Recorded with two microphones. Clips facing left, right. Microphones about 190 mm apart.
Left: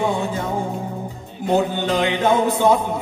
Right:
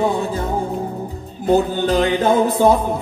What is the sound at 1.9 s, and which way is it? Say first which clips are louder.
Music: right 4 dB; 35° right (ahead or behind).